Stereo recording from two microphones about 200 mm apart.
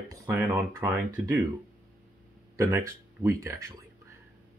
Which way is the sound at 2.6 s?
15° right (ahead or behind).